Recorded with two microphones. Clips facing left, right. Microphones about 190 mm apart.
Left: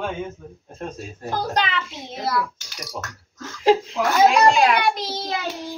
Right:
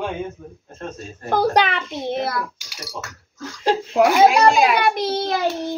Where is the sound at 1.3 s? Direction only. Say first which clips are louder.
Right 6 dB; 60° right (ahead or behind).